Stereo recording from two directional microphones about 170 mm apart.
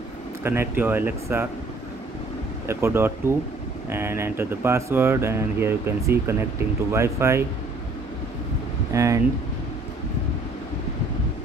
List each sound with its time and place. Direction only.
0.4 s speech: 15° right (ahead or behind)
2.6 s speech: 15° right (ahead or behind)
8.9 s speech: 20° right (ahead or behind)